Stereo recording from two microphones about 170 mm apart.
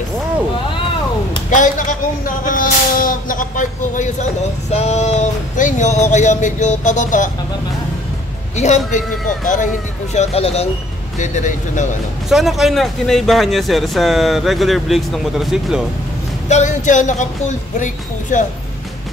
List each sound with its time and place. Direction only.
1.5 s speech: 50° left (ahead or behind)
8.5 s speech: 45° left (ahead or behind)
10.1 s speech: 35° left (ahead or behind)
11.1 s speech: 45° left (ahead or behind)
12.3 s speech: centre (ahead or behind)
16.4 s speech: 45° left (ahead or behind)